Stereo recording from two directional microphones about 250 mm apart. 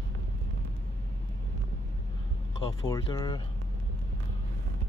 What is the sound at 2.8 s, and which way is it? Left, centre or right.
Speech, centre.